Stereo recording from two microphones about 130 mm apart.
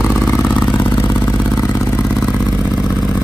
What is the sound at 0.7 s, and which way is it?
Vehicle, 40° left (ahead or behind).